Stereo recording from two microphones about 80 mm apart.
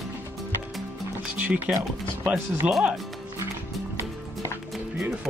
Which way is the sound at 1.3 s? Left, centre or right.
Centre.